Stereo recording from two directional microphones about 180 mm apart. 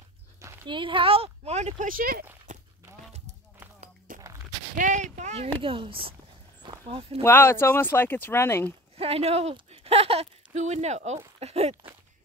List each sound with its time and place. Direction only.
0.4 s speech: 25° right (ahead or behind); by 2.2 s 55° right (ahead or behind)
2.5 s a sound: 45° right (ahead or behind)
4.1 s a sound: 50° right (ahead or behind)
5.6 s speech: 30° right (ahead or behind)
7.2 s speech: 10° left (ahead or behind)
8.9 s speech: 35° right (ahead or behind)